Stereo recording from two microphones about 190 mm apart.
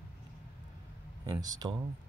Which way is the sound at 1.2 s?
20° right (ahead or behind).